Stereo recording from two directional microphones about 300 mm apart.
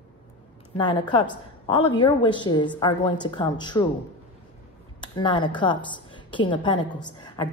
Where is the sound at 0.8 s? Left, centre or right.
Centre.